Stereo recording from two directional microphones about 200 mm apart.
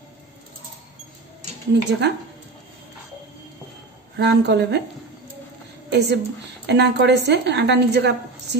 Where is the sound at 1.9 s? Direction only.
55° right (ahead or behind).